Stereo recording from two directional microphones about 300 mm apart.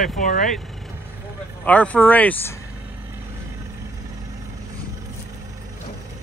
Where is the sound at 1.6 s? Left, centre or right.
Centre.